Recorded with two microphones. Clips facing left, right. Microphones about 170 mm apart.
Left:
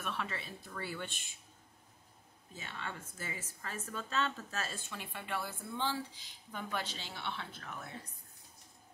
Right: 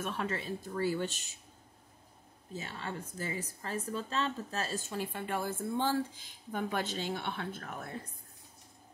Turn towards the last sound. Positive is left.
turn(degrees=-50)  # may be behind; listen again after turning